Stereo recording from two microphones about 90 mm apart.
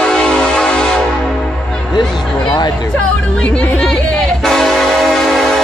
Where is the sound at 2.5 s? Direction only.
55° left (ahead or behind).